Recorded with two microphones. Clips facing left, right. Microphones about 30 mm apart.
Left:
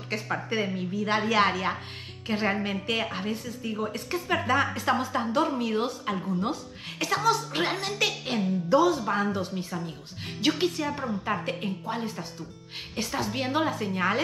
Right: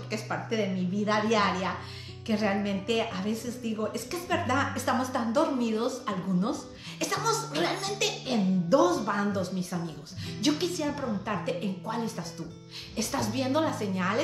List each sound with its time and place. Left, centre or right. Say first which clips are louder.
0.1 s a woman's voice: left 2 dB; left